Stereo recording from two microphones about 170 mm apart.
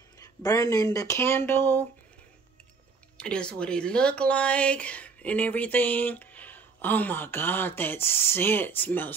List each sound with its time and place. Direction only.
0.4 s speech: 20° left (ahead or behind)
3.2 s speech: 5° left (ahead or behind)